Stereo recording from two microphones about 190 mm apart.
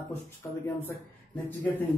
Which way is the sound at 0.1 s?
10° left (ahead or behind).